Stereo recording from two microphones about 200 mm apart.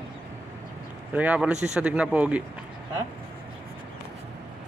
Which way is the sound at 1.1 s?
5° right (ahead or behind).